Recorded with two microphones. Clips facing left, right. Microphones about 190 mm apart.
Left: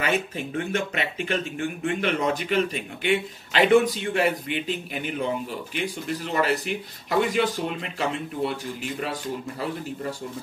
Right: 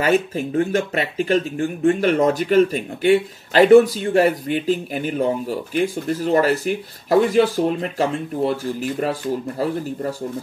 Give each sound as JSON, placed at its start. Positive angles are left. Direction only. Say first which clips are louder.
{"t": 0.0, "sound": "speech", "louder": "right 8 dB", "side_deg": -40}